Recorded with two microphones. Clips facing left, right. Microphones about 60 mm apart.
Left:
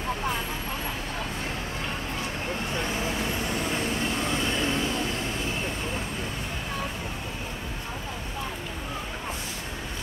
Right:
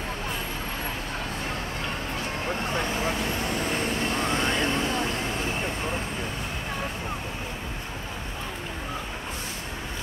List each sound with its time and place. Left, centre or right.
3.7 s vehicle: right